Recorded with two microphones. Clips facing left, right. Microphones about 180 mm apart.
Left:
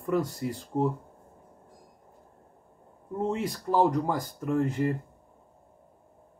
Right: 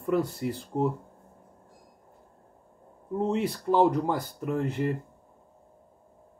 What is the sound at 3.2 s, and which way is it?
Speech, centre (ahead or behind).